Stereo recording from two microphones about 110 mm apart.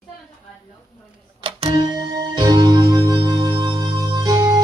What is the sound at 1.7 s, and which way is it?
Music, 40° right (ahead or behind).